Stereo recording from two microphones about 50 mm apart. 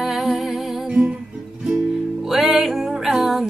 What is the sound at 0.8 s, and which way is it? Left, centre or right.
Music, centre.